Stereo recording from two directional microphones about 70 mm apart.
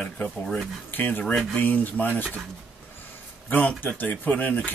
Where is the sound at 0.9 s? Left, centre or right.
Left.